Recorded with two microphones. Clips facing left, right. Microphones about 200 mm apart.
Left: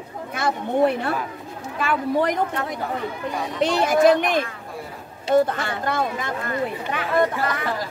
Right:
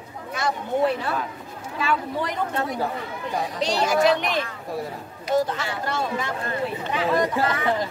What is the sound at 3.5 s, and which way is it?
Speech, 55° left (ahead or behind).